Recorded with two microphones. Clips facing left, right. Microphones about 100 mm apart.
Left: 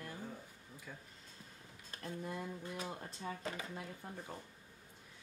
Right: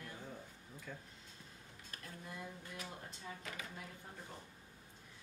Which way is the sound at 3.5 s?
30° left (ahead or behind).